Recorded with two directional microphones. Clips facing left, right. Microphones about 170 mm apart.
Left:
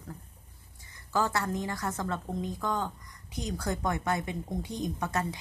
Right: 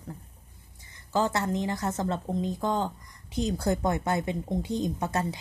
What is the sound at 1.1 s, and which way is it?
A woman's voice, 20° right (ahead or behind).